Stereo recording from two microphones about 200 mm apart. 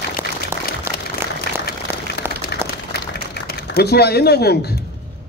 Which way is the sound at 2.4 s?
50° left (ahead or behind).